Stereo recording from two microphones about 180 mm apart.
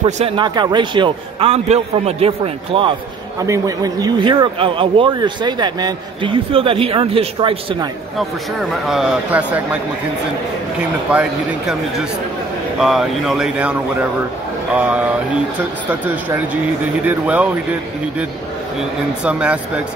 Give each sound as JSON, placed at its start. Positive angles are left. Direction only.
{"t": 0.2, "sound": "a man's voice", "side_deg": -25}
{"t": 3.4, "sound": "a man's voice", "side_deg": -20}
{"t": 8.2, "sound": "a man's voice", "side_deg": 0}
{"t": 10.8, "sound": "a man's voice", "side_deg": -5}
{"t": 17.0, "sound": "speech", "side_deg": -10}
{"t": 19.2, "sound": "speech", "side_deg": -5}